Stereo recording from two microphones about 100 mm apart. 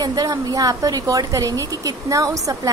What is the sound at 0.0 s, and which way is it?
A woman's voice, 40° right (ahead or behind).